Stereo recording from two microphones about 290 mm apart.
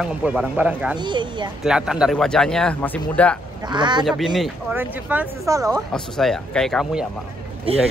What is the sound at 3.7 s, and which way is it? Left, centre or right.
Speech, centre.